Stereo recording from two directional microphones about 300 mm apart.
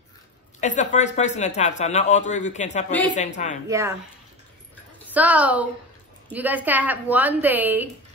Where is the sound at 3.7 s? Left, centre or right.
Centre.